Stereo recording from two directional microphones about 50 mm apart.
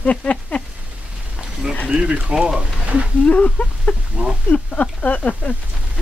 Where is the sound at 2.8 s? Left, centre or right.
Right.